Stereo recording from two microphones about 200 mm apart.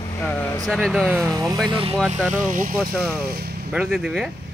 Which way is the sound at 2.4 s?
45° right (ahead or behind).